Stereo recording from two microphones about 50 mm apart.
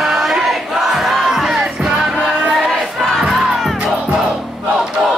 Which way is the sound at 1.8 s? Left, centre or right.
Centre.